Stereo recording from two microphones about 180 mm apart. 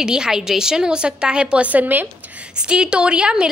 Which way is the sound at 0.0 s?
5° right (ahead or behind).